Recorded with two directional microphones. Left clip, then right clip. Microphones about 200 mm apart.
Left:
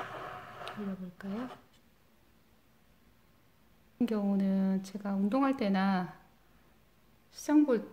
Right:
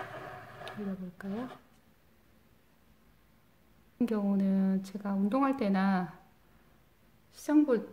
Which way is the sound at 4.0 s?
Centre (ahead or behind).